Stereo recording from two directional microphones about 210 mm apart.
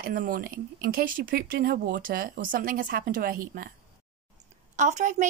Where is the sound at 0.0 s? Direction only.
40° right (ahead or behind).